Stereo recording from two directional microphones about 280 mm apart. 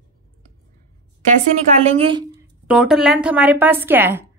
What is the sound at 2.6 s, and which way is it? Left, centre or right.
A woman's voice, centre.